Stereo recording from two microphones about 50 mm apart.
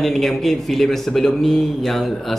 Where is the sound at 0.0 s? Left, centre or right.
Centre.